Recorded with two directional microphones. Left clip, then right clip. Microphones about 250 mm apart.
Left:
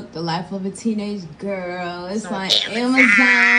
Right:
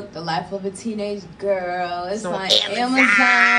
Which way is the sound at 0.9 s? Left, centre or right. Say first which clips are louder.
Right 2 dB; left.